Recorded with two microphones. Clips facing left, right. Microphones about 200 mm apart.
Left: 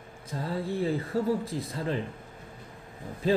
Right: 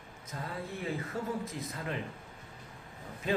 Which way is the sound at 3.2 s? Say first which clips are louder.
Left 6 dB; 35° left (ahead or behind).